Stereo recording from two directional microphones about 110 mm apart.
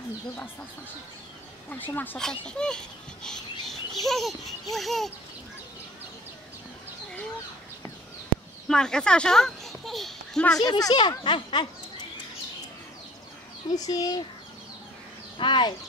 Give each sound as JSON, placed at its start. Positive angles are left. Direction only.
{"t": 1.7, "sound": "speech", "side_deg": 15}
{"t": 2.1, "sound": "speech", "side_deg": 5}
{"t": 8.6, "sound": "a child's voice", "side_deg": 5}
{"t": 10.6, "sound": "speech", "side_deg": 40}
{"t": 13.7, "sound": "speech", "side_deg": 35}
{"t": 15.3, "sound": "speech", "side_deg": 45}